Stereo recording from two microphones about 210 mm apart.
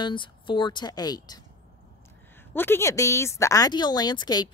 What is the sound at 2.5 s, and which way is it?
Speech, 10° left (ahead or behind).